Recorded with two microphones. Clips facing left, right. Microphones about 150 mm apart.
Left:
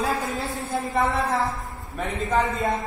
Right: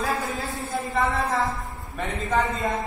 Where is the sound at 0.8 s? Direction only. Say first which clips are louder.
Left 1 dB; 20° left (ahead or behind).